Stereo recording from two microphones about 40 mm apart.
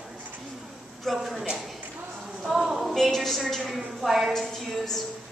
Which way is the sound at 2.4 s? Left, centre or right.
Centre.